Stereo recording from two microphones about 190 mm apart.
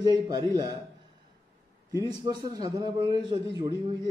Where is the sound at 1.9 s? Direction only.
20° right (ahead or behind).